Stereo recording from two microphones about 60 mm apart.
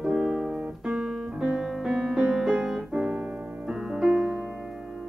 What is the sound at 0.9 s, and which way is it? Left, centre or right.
Music, centre.